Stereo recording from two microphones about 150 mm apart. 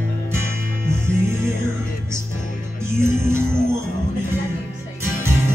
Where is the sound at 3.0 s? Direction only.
15° right (ahead or behind).